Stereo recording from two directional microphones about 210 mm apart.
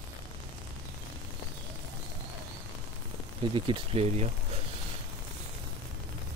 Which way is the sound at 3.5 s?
25° right (ahead or behind).